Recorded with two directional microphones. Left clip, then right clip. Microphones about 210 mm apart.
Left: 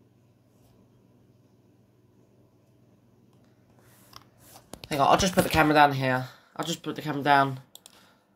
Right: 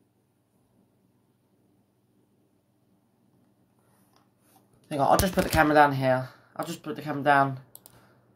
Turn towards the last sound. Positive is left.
turn(degrees=35)  # may be behind; listen again after turning